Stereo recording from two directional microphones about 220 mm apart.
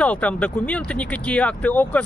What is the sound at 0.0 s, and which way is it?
Speech, 5° left (ahead or behind).